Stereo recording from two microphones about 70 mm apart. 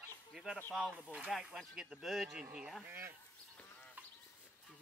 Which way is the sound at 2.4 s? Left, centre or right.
Centre.